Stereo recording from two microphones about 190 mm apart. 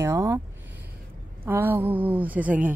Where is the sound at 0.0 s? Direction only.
15° right (ahead or behind).